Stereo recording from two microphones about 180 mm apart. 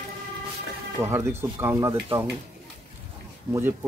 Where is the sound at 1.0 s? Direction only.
15° right (ahead or behind).